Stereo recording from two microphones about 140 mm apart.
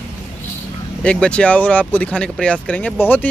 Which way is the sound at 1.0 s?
5° left (ahead or behind).